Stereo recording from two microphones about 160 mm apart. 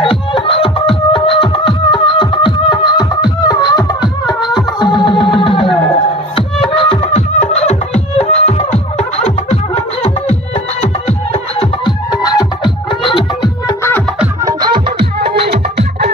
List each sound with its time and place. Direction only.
0.0 s beatboxing: 35° left (ahead or behind)
6.7 s music: 35° left (ahead or behind)
11.8 s music: 25° left (ahead or behind)
15.1 s music: 90° right